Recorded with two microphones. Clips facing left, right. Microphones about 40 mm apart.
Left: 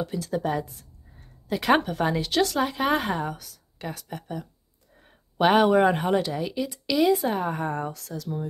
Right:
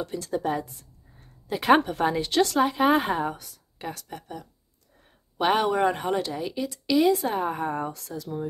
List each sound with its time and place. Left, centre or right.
0.0 s a woman's voice: centre